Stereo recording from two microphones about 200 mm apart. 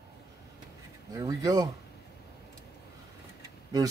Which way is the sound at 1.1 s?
15° right (ahead or behind).